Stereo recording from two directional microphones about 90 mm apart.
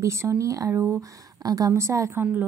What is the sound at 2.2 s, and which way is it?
Speech, 20° right (ahead or behind).